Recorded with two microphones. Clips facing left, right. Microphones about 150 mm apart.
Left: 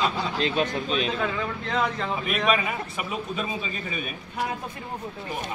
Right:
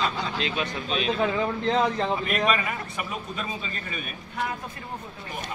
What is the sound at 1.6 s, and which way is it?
Speech, 30° right (ahead or behind).